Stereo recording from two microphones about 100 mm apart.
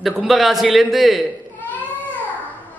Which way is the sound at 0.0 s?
5° right (ahead or behind).